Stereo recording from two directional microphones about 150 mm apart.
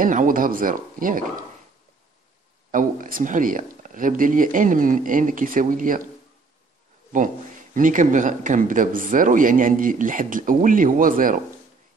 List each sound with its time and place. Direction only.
0.0 s speech: 65° right (ahead or behind)
2.7 s speech: 65° right (ahead or behind)
7.1 s speech: 65° right (ahead or behind)